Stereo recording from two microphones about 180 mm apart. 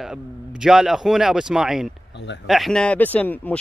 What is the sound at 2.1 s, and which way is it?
Speech, 75° left (ahead or behind).